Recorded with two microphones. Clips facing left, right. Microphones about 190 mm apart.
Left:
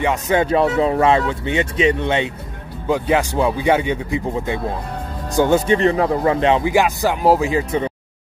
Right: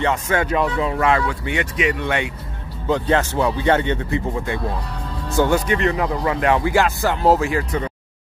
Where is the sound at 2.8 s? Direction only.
10° left (ahead or behind).